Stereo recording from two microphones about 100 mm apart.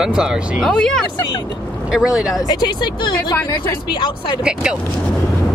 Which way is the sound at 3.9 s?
55° left (ahead or behind).